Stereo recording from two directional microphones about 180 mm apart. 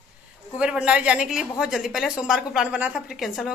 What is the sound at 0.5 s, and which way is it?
A woman's voice, 5° right (ahead or behind).